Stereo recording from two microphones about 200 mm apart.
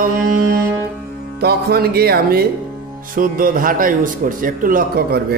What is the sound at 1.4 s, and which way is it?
Music, 50° right (ahead or behind).